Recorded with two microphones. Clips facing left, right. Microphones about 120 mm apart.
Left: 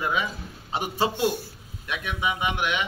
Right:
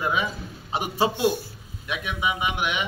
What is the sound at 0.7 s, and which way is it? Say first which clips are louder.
A man's voice: right 2 dB; 15° right (ahead or behind).